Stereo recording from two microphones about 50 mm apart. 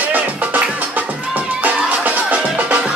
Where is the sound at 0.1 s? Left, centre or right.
Right.